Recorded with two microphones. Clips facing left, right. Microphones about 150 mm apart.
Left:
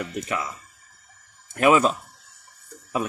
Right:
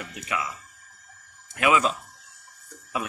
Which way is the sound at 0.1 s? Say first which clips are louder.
Left 3 dB; 35° left (ahead or behind).